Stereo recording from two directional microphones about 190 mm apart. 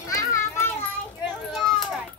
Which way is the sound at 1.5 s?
Centre (ahead or behind).